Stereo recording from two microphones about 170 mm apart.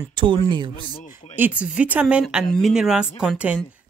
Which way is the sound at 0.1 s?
25° right (ahead or behind).